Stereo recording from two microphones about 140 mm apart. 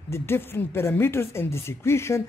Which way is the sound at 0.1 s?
15° left (ahead or behind).